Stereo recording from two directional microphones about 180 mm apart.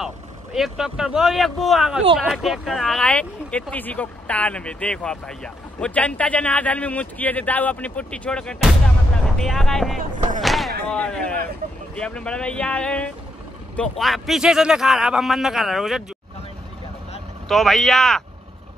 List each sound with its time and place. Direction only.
0.0 s a man's voice: centre (ahead or behind)
9.9 s music: 45° right (ahead or behind)
10.4 s a sound: centre (ahead or behind)
10.9 s a man's voice: 5° left (ahead or behind)
17.5 s a man's voice: centre (ahead or behind)